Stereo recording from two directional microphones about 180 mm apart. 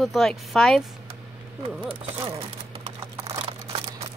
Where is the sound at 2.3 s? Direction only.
30° right (ahead or behind).